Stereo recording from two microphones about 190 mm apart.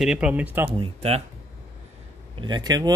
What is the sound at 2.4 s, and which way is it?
Speech, 20° right (ahead or behind).